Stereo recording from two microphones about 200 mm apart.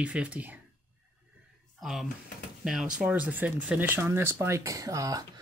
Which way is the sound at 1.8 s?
Centre (ahead or behind).